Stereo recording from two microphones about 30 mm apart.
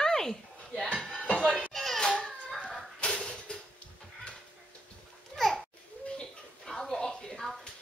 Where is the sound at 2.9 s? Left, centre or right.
Left.